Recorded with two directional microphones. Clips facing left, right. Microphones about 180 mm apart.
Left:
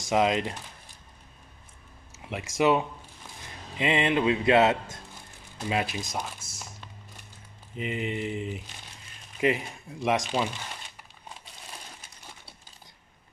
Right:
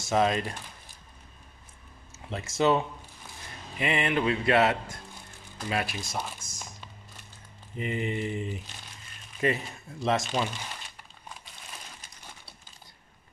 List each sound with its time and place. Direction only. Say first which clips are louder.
0.0 s mantra: left 1 dB; 15° left (ahead or behind)
2.1 s a sound: left 1 dB; 10° left (ahead or behind)
2.5 s mantra: left 1 dB; 10° left (ahead or behind)
3.7 s speech: left 3 dB; 20° left (ahead or behind)
5.6 s mantra: left 2 dB; 20° left (ahead or behind)
6.2 s a sound: even; 5° left (ahead or behind)
7.7 s mantra: even; 5° left (ahead or behind)